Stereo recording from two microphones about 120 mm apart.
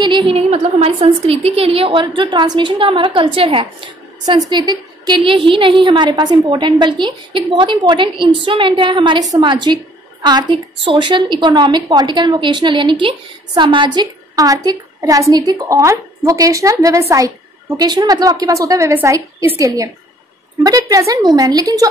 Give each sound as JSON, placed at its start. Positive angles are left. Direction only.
{"t": 0.0, "sound": "a woman's voice", "side_deg": -45}
{"t": 4.3, "sound": "a woman's voice", "side_deg": -35}